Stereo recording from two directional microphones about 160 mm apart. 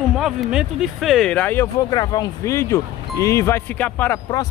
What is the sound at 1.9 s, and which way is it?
Speech, 25° left (ahead or behind).